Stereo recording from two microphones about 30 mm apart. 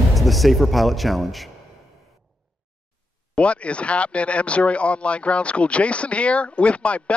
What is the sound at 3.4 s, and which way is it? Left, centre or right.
Speech, left.